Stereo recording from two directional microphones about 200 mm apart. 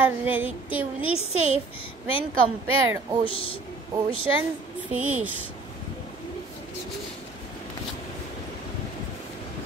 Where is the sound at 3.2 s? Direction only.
25° left (ahead or behind).